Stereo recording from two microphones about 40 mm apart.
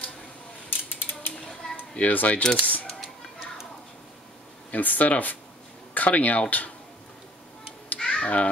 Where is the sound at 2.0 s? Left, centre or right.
Left.